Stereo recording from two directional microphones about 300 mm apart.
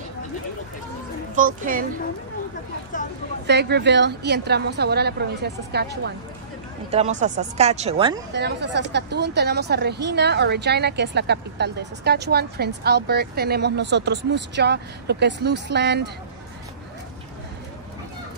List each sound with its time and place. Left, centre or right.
1.3 s speech: right
2.9 s speech: left
3.4 s speech: right
6.9 s speech: right
8.3 s speech: right